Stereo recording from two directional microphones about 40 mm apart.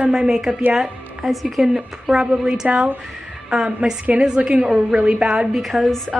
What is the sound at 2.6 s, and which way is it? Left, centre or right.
Speech, right.